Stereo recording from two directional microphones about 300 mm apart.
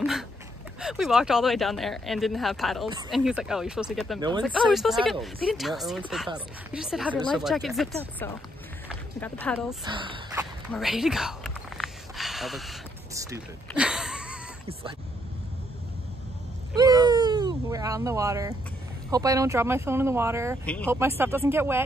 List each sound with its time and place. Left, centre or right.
0.7 s speech: centre
4.2 s speech: centre
4.5 s speech: centre
9.8 s speech: centre
10.7 s a sound: centre
13.1 s a sound: centre
14.7 s speech: centre
16.7 s a sound: centre
19.0 s speech: centre
20.6 s speech: centre
20.9 s speech: centre